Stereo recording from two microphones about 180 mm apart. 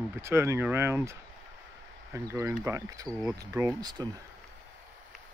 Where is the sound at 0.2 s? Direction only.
15° right (ahead or behind).